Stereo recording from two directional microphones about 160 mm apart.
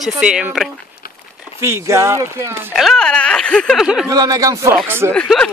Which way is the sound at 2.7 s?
Centre (ahead or behind).